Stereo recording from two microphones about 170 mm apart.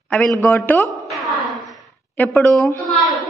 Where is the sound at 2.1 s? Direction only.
10° left (ahead or behind).